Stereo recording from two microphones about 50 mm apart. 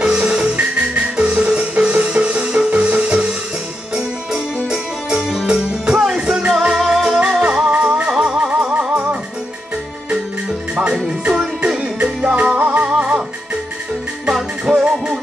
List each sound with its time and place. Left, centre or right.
0.0 s music: centre
5.5 s music: centre
11.1 s music: centre
12.5 s music: right
12.9 s music: right
14.2 s music: centre